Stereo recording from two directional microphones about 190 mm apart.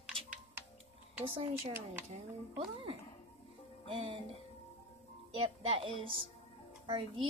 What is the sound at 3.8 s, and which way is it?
Music, 25° right (ahead or behind).